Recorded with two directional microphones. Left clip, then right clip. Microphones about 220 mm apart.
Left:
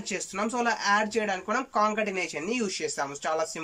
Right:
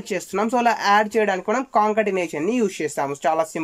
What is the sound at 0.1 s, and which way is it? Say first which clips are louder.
Speech: right 9 dB; 35° right (ahead or behind).